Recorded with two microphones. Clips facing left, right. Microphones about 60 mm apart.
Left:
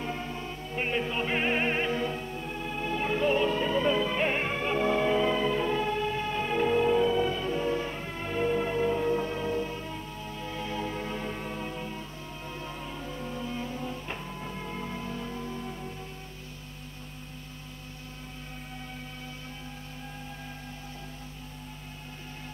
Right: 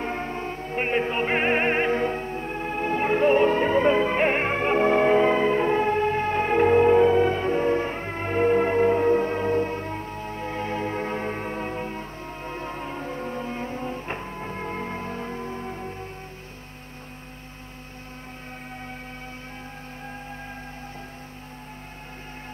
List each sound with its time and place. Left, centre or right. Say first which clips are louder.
0.0 s music: right 6 dB; right